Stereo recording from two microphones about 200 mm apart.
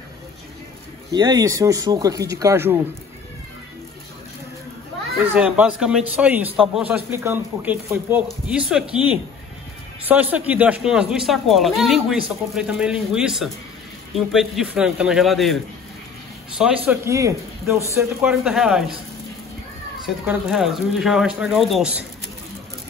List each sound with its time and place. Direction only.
1.1 s speech: 20° right (ahead or behind)
5.2 s speech: 5° right (ahead or behind)
10.3 s speech: 5° right (ahead or behind)
16.8 s speech: 15° right (ahead or behind)
20.2 s speech: centre (ahead or behind)